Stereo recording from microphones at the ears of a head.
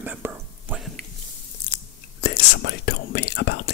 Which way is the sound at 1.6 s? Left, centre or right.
Left.